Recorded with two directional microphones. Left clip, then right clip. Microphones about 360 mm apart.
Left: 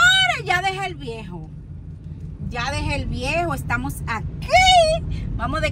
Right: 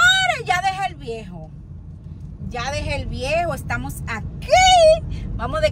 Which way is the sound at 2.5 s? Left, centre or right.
Centre.